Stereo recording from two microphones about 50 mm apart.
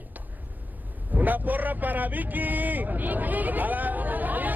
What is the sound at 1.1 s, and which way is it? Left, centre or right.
Vehicle, right.